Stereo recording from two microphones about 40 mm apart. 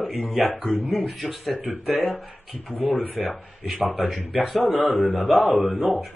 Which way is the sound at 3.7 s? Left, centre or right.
Centre.